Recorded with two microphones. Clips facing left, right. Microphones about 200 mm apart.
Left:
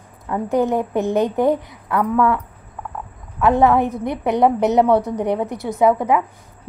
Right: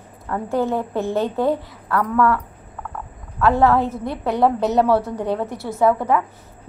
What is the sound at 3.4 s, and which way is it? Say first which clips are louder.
A woman's voice: left 1 dB; 20° left (ahead or behind).